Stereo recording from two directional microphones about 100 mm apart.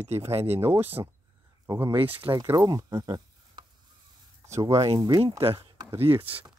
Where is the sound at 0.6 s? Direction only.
25° right (ahead or behind); by 3.6 s 45° right (ahead or behind).